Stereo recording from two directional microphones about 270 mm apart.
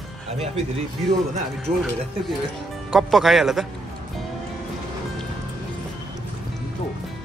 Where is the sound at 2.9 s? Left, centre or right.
Centre.